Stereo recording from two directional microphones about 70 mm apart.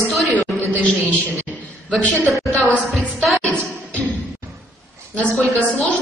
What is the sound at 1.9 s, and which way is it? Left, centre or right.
Speech, centre.